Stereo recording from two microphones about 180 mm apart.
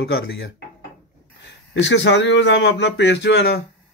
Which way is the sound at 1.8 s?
85° left.